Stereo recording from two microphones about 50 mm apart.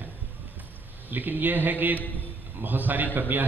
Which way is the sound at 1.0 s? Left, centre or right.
Right.